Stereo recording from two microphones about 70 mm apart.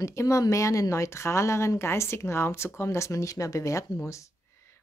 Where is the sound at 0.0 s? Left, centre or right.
Left.